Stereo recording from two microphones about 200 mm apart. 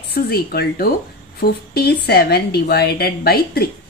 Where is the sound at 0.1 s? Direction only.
50° left (ahead or behind).